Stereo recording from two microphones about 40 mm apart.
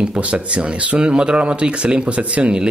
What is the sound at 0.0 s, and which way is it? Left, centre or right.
Speech, right.